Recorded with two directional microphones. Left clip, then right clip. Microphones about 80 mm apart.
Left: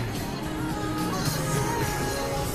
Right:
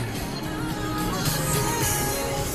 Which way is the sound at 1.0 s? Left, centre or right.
Right.